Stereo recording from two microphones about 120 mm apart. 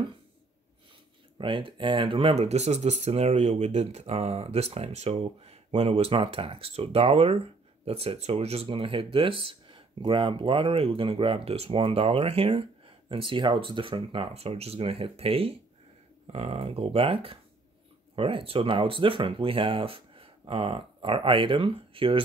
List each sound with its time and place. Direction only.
1.4 s speech: 45° right (ahead or behind)